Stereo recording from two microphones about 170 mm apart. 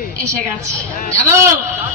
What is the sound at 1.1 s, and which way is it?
Speech, 15° right (ahead or behind).